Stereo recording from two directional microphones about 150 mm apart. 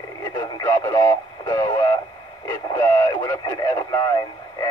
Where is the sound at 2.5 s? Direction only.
25° left (ahead or behind).